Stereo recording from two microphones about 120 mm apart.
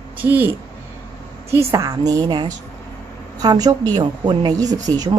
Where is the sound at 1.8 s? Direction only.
30° right (ahead or behind).